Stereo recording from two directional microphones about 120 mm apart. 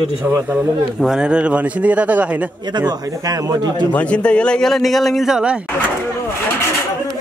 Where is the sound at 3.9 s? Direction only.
10° left (ahead or behind); by 5.6 s 5° right (ahead or behind).